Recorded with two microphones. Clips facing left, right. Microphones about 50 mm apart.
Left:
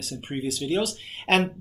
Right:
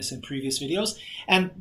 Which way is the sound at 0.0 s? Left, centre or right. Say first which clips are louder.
Left 1 dB; centre.